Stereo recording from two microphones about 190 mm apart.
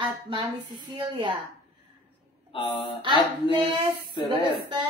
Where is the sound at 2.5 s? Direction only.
25° left (ahead or behind).